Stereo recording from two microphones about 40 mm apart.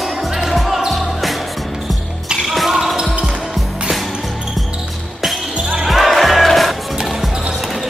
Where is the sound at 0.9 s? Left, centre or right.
Centre.